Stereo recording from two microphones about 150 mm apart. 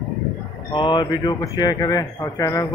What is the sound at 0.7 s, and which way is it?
Speech, 30° left (ahead or behind).